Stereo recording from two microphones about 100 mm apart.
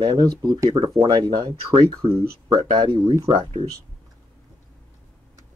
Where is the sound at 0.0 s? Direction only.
40° right (ahead or behind).